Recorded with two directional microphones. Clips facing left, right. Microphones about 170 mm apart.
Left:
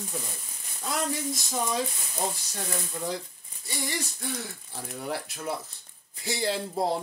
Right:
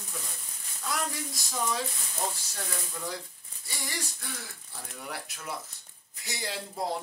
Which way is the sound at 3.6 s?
20° left (ahead or behind).